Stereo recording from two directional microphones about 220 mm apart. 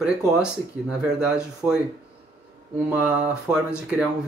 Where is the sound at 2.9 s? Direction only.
5° right (ahead or behind).